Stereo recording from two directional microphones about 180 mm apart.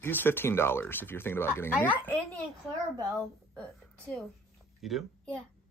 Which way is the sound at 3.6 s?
5° left (ahead or behind).